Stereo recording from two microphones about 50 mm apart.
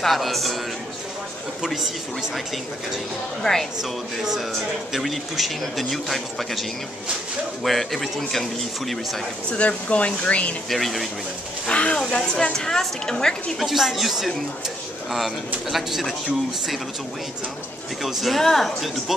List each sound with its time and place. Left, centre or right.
0.0 s speech: centre
3.4 s speech: centre
4.9 s speech: centre
7.6 s speech: centre
9.5 s speech: left
10.7 s speech: centre
11.6 s speech: left
13.6 s speech: centre
18.0 s speech: centre